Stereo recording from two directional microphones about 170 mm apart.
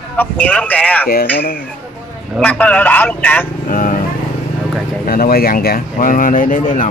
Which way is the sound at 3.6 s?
50° left (ahead or behind).